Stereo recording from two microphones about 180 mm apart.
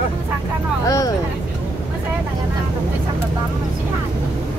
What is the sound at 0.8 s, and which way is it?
Vehicle, 20° left (ahead or behind).